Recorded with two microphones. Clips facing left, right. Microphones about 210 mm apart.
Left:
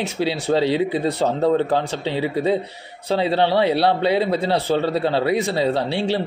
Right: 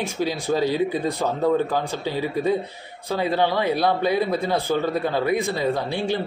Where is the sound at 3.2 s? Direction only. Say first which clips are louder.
Left 2 dB; 30° left (ahead or behind).